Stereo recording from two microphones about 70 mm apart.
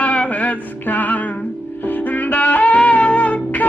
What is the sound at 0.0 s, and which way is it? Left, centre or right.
Music, centre.